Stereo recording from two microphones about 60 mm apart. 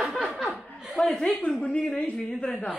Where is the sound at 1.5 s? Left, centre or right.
Centre.